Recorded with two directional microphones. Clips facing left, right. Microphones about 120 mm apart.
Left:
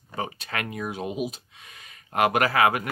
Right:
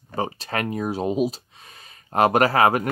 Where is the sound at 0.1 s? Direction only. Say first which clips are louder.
Right 5 dB; 35° right (ahead or behind).